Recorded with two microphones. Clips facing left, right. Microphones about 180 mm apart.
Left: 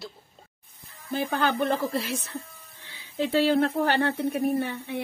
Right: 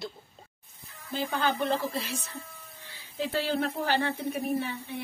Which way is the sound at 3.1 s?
70° left (ahead or behind).